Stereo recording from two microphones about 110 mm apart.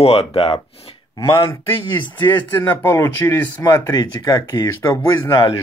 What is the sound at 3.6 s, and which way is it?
Speech, 30° left (ahead or behind).